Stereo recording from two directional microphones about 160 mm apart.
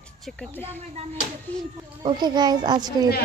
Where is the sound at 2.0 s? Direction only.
25° right (ahead or behind).